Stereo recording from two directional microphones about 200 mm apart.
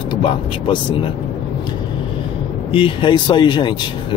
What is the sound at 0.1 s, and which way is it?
Vehicle, 25° left (ahead or behind).